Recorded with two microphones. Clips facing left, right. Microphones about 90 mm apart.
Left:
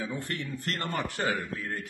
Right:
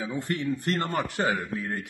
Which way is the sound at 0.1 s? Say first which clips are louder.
Right 6 dB; 20° right (ahead or behind).